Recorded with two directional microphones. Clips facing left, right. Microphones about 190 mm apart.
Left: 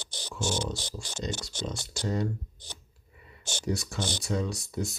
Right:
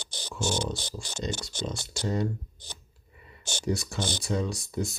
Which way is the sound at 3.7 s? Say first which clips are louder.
Right 2 dB; 25° right (ahead or behind).